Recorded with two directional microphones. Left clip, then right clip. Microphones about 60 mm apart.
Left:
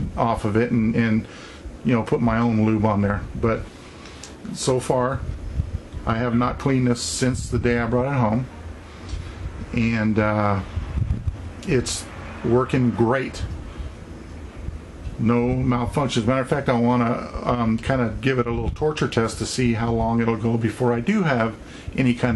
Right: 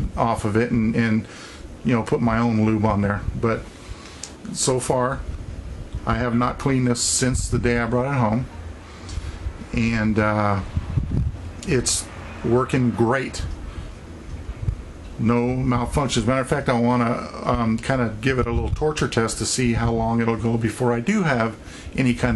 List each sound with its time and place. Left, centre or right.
0.1 s speech: right
9.7 s speech: right
11.6 s speech: right
15.2 s speech: right